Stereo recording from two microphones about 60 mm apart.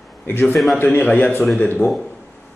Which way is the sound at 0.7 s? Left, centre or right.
Left.